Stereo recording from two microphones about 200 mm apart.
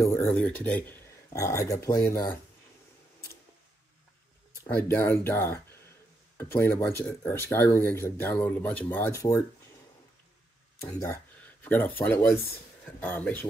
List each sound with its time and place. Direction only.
0.0 s speech: 15° left (ahead or behind)
4.6 s speech: 10° left (ahead or behind)
10.8 s speech: 15° left (ahead or behind)